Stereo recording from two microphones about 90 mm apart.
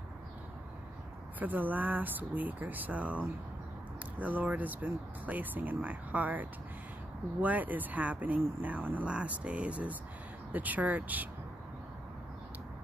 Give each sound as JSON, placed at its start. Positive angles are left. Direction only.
{"t": 1.4, "sound": "speech", "side_deg": -20}